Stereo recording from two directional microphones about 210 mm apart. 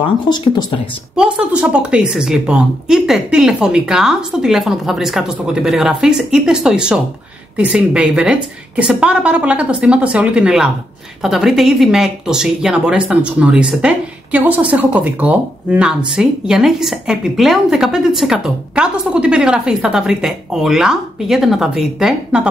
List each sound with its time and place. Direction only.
0.0 s speech: 20° left (ahead or behind)
1.1 s speech: 5° right (ahead or behind)